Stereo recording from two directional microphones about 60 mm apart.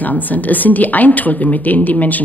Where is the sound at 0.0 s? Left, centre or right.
Left.